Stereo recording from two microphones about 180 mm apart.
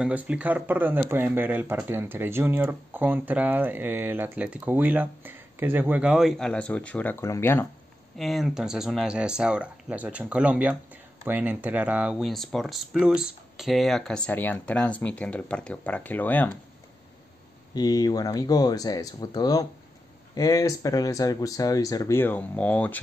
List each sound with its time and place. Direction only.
0.0 s speech: 10° right (ahead or behind); by 7.6 s 15° left (ahead or behind)
8.2 s speech: centre (ahead or behind)
17.7 s speech: 20° left (ahead or behind)